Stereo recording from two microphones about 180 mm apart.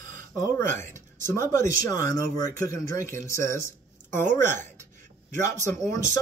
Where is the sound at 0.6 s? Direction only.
15° left (ahead or behind).